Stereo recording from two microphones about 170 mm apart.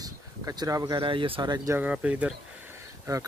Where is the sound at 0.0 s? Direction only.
20° right (ahead or behind).